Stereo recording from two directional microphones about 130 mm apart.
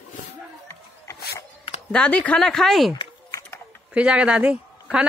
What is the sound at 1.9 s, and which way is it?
Speech, 5° left (ahead or behind).